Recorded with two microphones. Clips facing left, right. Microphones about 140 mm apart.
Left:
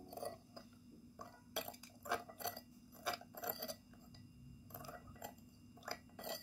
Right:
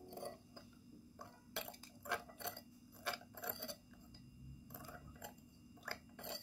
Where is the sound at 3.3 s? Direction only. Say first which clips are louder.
Left 2 dB; 10° left (ahead or behind).